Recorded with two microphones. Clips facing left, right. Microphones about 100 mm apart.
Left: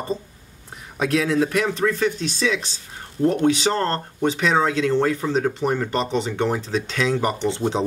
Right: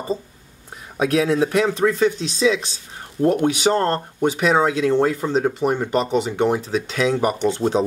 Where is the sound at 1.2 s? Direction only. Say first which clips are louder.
Right 2 dB; 30° right (ahead or behind).